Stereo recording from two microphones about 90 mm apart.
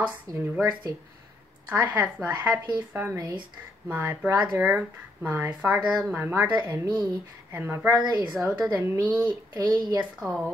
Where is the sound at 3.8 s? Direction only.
20° right (ahead or behind).